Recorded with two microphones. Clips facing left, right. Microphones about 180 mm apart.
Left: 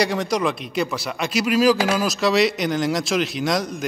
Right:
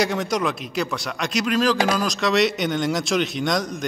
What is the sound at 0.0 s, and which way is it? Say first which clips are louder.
A man's voice: left 1 dB; centre (ahead or behind).